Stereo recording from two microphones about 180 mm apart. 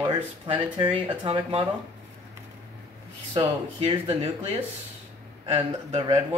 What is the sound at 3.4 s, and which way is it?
Speech, 35° right (ahead or behind).